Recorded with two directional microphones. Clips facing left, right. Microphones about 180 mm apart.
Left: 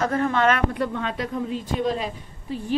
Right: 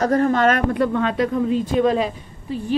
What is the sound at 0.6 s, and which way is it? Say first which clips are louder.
Speech: right 7 dB; 75° right (ahead or behind).